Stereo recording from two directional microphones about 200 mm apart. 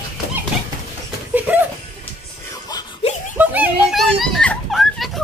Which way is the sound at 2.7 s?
20° left (ahead or behind).